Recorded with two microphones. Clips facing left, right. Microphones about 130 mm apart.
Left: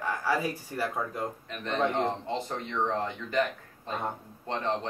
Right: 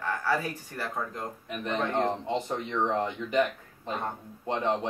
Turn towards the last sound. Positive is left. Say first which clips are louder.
# right 3 dB
turn(degrees=-15)  # may be behind; listen again after turning